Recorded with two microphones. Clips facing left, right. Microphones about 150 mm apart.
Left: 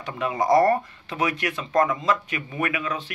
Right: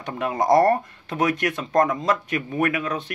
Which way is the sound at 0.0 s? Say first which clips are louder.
Right 1 dB; 50° right (ahead or behind).